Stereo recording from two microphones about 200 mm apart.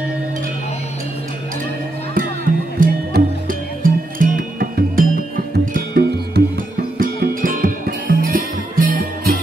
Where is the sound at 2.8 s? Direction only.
45° right (ahead or behind).